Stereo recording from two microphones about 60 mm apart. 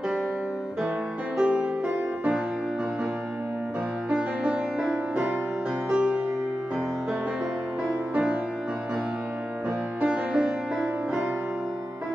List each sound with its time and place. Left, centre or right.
1.4 s music: centre
4.1 s music: centre
8.1 s music: centre
10.0 s music: centre